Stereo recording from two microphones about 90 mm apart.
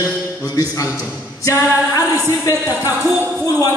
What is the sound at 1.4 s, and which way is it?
Music, 35° left (ahead or behind).